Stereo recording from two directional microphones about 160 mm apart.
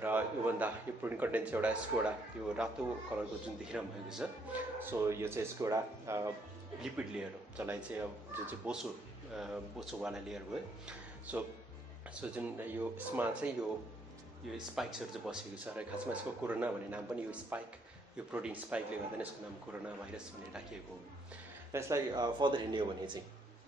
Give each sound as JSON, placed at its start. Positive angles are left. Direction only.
{"t": 0.0, "sound": "a man's voice", "side_deg": -10}
{"t": 6.8, "sound": "a man's voice", "side_deg": -5}
{"t": 14.8, "sound": "a man's voice", "side_deg": -5}
{"t": 21.7, "sound": "speech", "side_deg": -20}